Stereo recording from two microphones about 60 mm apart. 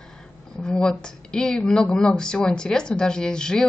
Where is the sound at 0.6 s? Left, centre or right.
Centre.